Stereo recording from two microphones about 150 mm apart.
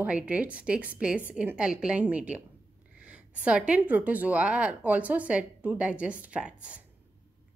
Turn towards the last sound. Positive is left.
turn(degrees=-10)  # may be behind; listen again after turning